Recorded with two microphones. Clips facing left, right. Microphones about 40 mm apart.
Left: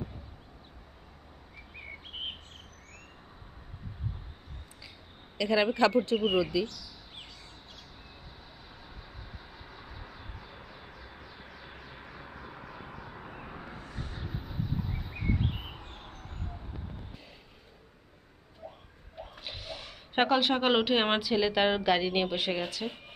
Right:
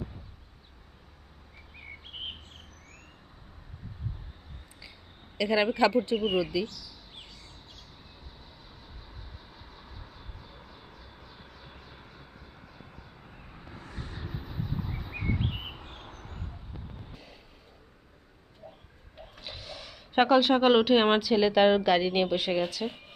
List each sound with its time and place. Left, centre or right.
2.1 s bird: centre
5.4 s a woman's voice: centre
9.5 s vehicle: left
13.7 s bird: centre
15.7 s vehicle: centre
19.4 s a sound: left
20.2 s speech: centre
20.5 s a woman's voice: centre